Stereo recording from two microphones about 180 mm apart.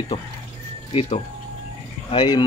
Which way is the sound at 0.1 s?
35° left (ahead or behind).